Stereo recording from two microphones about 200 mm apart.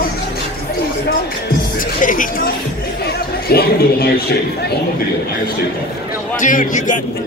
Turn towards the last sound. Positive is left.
turn(degrees=40)  # may be behind; listen again after turning